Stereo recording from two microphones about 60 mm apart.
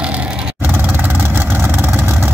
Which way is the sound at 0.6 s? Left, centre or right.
Right.